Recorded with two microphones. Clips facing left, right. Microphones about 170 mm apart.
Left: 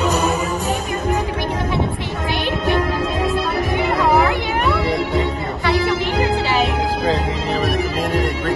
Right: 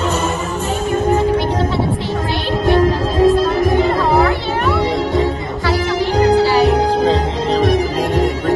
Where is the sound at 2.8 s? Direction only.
40° right (ahead or behind).